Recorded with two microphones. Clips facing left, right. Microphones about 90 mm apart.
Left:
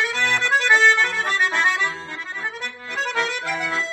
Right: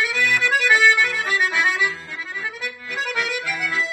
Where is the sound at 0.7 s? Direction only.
5° right (ahead or behind).